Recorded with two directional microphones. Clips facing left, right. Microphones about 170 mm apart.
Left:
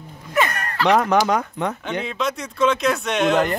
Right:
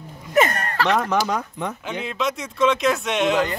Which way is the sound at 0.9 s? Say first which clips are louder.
Left 7 dB; 65° left (ahead or behind).